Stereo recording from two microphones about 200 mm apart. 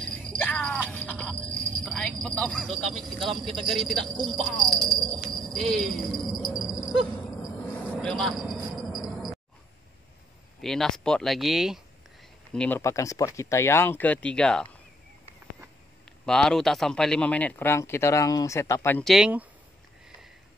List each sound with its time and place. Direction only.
0.4 s music: 5° left (ahead or behind)
1.3 s a sound: 15° right (ahead or behind)
1.8 s a sound: 5° left (ahead or behind)
2.2 s speech: 5° left (ahead or behind)
7.6 s vehicle: 10° left (ahead or behind)
8.7 s cricket: centre (ahead or behind)
10.6 s speech: centre (ahead or behind)
12.5 s speech: 10° left (ahead or behind)
16.1 s speech: 5° left (ahead or behind)